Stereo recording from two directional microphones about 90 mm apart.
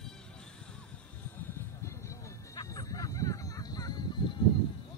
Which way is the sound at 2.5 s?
40° left (ahead or behind).